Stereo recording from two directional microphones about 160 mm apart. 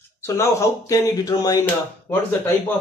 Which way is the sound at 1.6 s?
10° left (ahead or behind).